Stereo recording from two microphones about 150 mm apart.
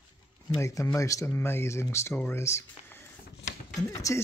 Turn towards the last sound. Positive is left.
turn(degrees=20)  # may be behind; listen again after turning